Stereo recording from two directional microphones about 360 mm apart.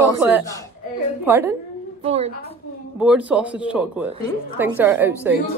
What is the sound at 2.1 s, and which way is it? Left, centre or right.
Speech, centre.